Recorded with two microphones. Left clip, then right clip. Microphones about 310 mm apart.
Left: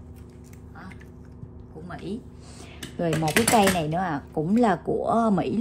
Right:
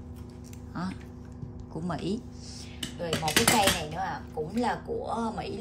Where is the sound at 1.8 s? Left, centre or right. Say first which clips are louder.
Right 2 dB; centre.